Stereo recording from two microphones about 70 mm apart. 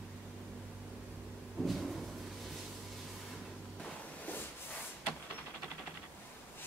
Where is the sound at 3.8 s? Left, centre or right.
Left.